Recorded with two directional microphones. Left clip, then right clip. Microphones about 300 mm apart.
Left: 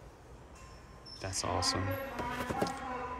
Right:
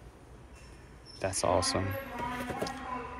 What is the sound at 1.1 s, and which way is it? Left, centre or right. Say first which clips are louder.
Speech: right 7 dB; centre.